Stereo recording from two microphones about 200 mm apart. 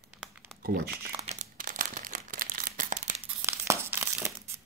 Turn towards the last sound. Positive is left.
turn(degrees=-15)  # may be behind; listen again after turning